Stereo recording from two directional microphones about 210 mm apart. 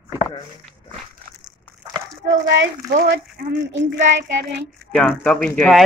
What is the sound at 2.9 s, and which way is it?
Child singing, 45° right (ahead or behind).